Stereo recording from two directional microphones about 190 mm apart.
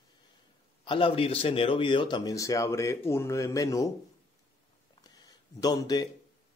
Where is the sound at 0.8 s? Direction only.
25° left (ahead or behind).